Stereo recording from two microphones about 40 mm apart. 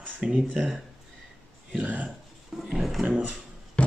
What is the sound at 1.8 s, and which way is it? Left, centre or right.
Speech, right.